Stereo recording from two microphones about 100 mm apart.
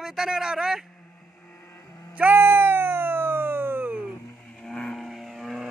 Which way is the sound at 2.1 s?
20° right (ahead or behind).